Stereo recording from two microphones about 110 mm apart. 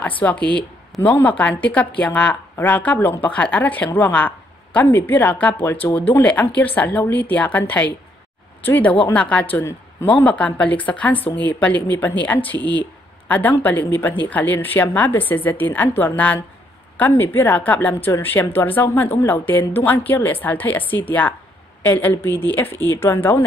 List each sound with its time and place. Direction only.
0.2 s speech: 15° left (ahead or behind)
12.5 s speech: 45° right (ahead or behind)
13.3 s a woman's voice: 15° left (ahead or behind)